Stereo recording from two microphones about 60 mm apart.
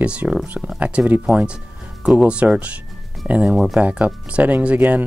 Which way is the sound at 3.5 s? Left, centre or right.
Centre.